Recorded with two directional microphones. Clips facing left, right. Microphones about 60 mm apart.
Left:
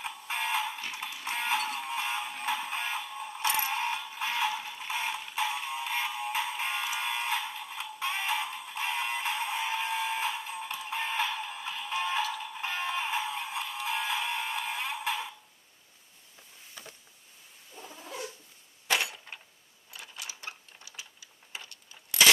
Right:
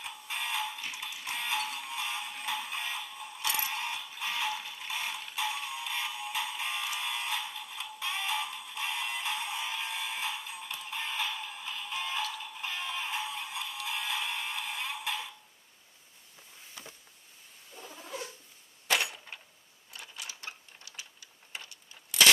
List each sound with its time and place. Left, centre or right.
0.0 s fire alarm: left
0.9 s music: left
12.5 s music: left
17.7 s cat: centre
18.9 s a sound: centre